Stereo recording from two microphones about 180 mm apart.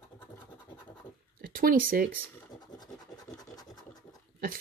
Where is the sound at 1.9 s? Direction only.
55° right (ahead or behind).